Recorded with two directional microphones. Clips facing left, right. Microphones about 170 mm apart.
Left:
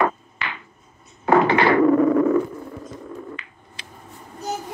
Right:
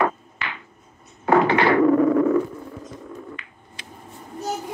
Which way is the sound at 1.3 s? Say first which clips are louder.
Left 1 dB; 35° left (ahead or behind).